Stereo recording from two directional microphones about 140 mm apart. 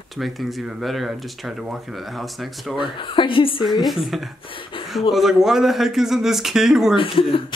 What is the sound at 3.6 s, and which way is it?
Speech, centre (ahead or behind).